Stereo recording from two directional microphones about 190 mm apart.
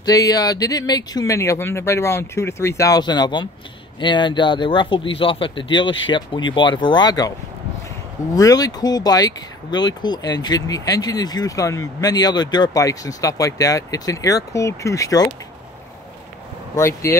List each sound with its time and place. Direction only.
0.0 s speech: 20° left (ahead or behind)
8.4 s speech: 20° left (ahead or behind)
16.7 s speech: 15° left (ahead or behind)